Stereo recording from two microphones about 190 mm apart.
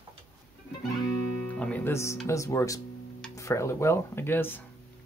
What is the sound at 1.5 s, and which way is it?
Speech, 5° left (ahead or behind).